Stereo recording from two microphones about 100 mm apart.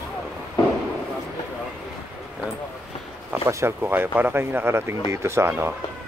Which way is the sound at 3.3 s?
25° right (ahead or behind).